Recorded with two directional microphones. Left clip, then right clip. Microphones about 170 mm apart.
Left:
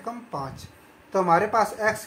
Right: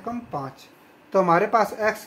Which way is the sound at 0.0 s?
30° right (ahead or behind).